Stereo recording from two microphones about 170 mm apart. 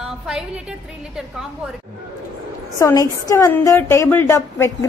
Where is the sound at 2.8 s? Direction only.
20° left (ahead or behind).